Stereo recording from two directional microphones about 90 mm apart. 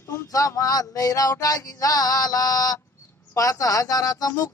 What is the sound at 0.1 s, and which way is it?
Speech, 35° left (ahead or behind).